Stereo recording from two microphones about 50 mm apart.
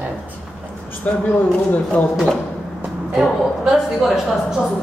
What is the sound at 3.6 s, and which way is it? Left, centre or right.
Speech, centre.